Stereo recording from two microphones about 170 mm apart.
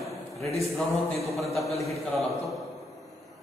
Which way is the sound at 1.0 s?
40° left (ahead or behind).